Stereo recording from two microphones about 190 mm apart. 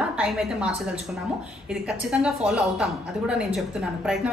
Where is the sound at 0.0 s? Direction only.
5° right (ahead or behind).